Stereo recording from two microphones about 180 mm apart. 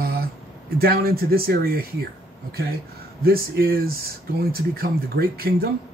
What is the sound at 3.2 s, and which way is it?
Speech, 55° right (ahead or behind).